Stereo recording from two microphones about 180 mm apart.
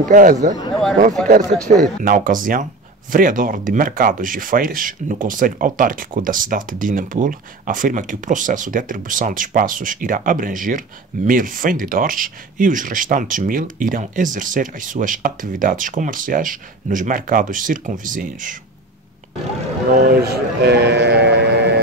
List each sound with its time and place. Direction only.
0.1 s speech: 50° right (ahead or behind)
20.0 s speech: 60° right (ahead or behind)